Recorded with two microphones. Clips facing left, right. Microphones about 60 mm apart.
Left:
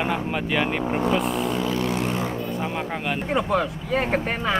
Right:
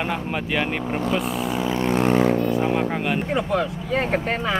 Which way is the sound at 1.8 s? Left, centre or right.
Right.